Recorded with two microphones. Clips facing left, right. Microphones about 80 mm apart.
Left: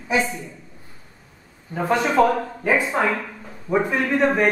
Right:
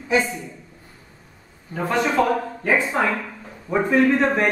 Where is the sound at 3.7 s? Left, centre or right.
Centre.